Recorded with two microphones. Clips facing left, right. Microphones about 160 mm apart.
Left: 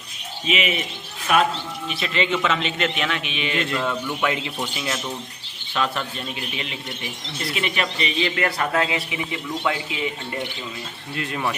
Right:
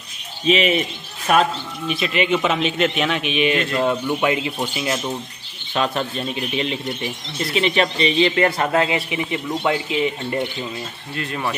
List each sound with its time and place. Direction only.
0.5 s speech: 35° right (ahead or behind)
1.9 s a man's voice: 15° right (ahead or behind)
5.8 s a man's voice: 25° right (ahead or behind)